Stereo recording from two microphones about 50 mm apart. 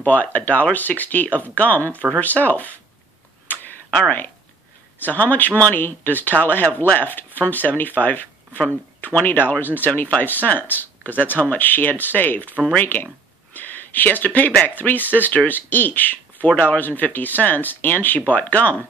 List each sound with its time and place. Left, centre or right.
0.0 s speech: left
3.5 s tick-tock: left
5.0 s speech: left
12.8 s a sound: left
14.2 s speech: left